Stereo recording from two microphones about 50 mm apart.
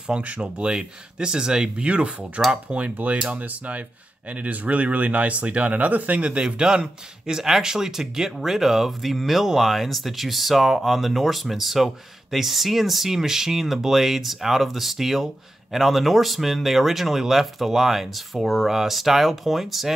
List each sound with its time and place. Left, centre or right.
0.0 s speech: right; by 19.9 s centre